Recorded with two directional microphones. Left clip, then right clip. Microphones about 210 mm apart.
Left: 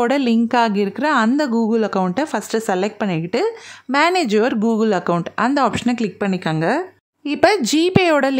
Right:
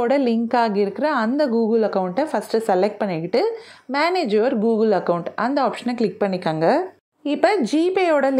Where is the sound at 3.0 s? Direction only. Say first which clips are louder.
Even; 40° left (ahead or behind).